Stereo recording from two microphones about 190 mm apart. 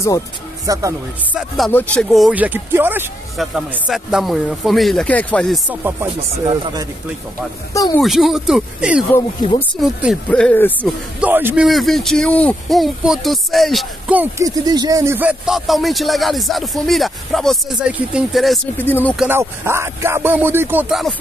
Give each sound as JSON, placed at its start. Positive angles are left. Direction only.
{"t": 0.7, "sound": "speech", "side_deg": -20}
{"t": 1.7, "sound": "speech", "side_deg": 5}
{"t": 5.7, "sound": "speech", "side_deg": -10}
{"t": 6.4, "sound": "speech", "side_deg": -25}
{"t": 7.7, "sound": "speech", "side_deg": 15}
{"t": 8.0, "sound": "speech", "side_deg": 0}
{"t": 11.1, "sound": "speech", "side_deg": -10}
{"t": 19.1, "sound": "speech", "side_deg": -10}